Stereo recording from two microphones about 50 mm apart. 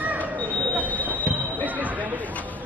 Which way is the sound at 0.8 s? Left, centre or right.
Left.